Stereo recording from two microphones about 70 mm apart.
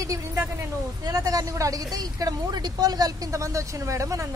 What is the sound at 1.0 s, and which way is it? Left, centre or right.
A woman's voice, right.